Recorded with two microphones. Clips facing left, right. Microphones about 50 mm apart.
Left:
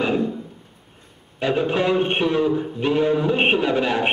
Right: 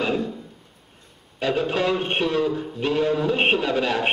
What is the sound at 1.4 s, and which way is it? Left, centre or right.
A man's voice, centre.